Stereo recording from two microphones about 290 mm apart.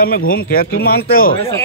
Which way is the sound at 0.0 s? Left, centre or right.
Left.